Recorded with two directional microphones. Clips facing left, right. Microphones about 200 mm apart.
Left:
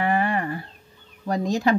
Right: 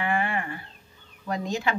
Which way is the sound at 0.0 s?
40° left (ahead or behind).